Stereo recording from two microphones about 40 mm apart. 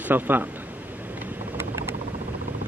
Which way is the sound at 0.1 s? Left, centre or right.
Right.